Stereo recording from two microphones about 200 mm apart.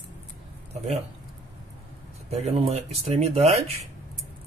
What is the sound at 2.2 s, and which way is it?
Speech, 30° right (ahead or behind).